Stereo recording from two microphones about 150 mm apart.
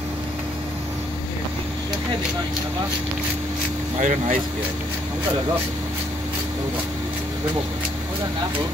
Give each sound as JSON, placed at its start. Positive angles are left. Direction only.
{"t": 4.0, "sound": "speech", "side_deg": -55}